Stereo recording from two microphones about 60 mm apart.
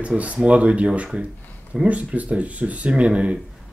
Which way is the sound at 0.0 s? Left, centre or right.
Right.